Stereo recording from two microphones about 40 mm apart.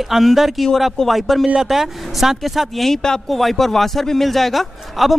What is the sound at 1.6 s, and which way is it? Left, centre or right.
A man's voice, centre.